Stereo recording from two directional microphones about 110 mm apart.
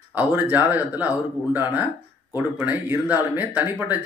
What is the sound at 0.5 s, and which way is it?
Speech, 15° right (ahead or behind).